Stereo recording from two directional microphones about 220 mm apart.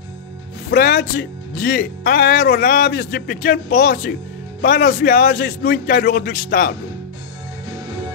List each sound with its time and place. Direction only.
0.7 s speech: 45° left (ahead or behind)